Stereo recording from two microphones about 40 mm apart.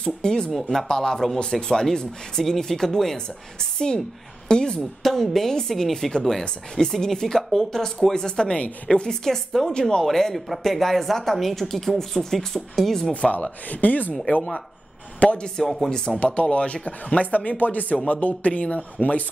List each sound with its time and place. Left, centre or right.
0.0 s speech: centre
0.5 s a woman's voice: centre
3.7 s a woman's voice: left
5.0 s a woman's voice: centre
9.7 s speech: centre
10.0 s a woman's voice: centre
13.1 s a man's voice: left
15.1 s speech: left
15.5 s a woman's voice: centre
16.2 s a man's voice: left